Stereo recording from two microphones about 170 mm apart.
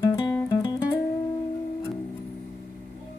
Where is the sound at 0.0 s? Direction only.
20° left (ahead or behind).